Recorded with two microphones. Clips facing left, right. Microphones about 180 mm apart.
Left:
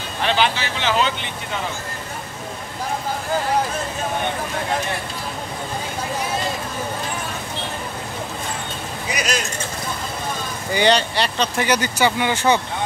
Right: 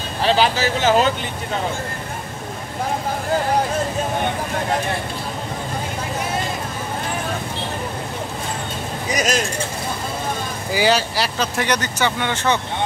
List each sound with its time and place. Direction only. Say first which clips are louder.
0.2 s speech: right 3 dB; 35° right (ahead or behind)
9.1 s speech: right 4 dB; 45° right (ahead or behind)
10.7 s speech: left 1 dB; 5° right (ahead or behind)